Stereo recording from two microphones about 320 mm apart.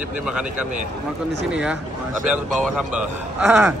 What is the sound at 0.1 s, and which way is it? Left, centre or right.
A man's voice, centre.